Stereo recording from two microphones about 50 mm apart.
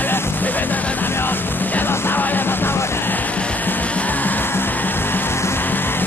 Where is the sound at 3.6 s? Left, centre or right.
Left.